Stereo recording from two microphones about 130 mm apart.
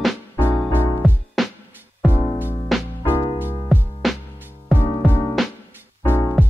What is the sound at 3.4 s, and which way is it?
Music, 15° right (ahead or behind).